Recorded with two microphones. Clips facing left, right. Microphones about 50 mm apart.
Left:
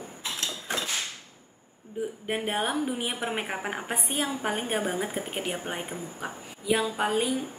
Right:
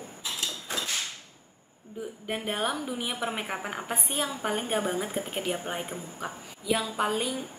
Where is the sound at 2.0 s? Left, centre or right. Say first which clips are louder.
Left 4 dB; left.